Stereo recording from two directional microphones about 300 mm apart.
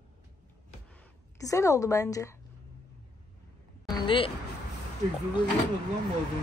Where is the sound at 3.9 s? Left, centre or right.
Centre.